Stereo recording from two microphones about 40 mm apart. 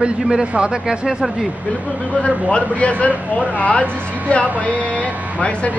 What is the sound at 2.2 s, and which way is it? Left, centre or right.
Speech, left.